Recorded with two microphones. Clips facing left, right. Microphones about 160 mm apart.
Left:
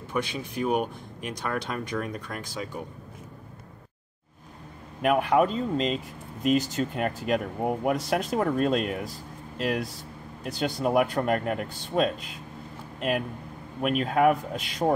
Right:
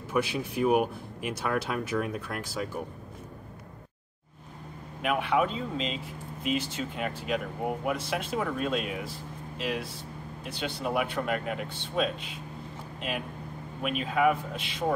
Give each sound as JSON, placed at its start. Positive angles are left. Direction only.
{"t": 0.1, "sound": "speech", "side_deg": -5}
{"t": 5.0, "sound": "speech", "side_deg": 45}
{"t": 10.4, "sound": "speech", "side_deg": 40}
{"t": 13.8, "sound": "speech", "side_deg": 50}